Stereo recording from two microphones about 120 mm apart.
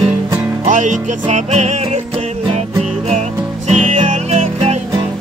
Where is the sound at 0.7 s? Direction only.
90° right; by 2.0 s 75° right (ahead or behind).